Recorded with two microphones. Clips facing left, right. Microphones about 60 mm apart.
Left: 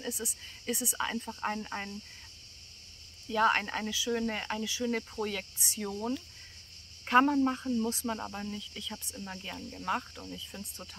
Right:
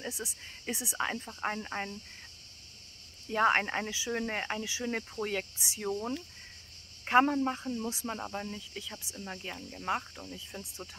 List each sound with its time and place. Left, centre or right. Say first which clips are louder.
0.0 s speech: left 1 dB; right
3.3 s speech: even; right
8.9 s speech: even; centre